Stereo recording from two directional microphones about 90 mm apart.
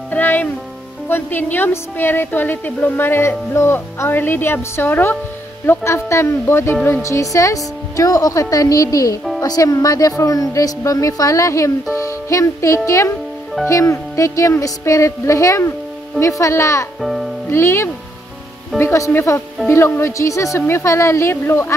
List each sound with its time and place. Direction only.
0.1 s music: 20° left (ahead or behind)
1.0 s a woman's voice: 25° left (ahead or behind)
17.0 s speech: centre (ahead or behind)
17.5 s a woman's voice: 30° left (ahead or behind)